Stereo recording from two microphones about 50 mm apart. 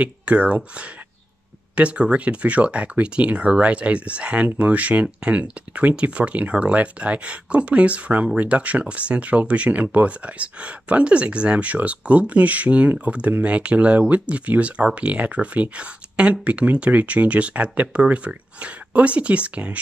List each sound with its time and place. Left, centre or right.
0.0 s speech: right